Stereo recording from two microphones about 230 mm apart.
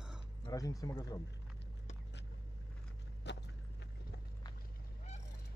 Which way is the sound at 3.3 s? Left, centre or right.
Left.